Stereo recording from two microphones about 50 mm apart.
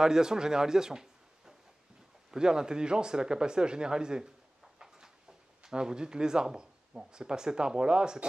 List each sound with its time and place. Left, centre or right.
0.0 s a man's voice: centre
4.7 s a sound: centre
5.6 s speech: centre